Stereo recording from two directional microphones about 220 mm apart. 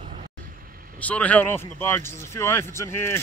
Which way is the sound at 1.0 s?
5° left (ahead or behind).